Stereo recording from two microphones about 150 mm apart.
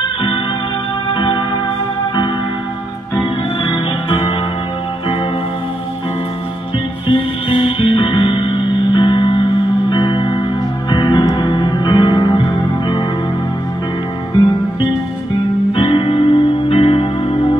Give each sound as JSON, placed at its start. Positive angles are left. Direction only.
{"t": 1.0, "sound": "music", "side_deg": 30}
{"t": 3.6, "sound": "music", "side_deg": 30}
{"t": 7.1, "sound": "music", "side_deg": 35}
{"t": 14.3, "sound": "music", "side_deg": 30}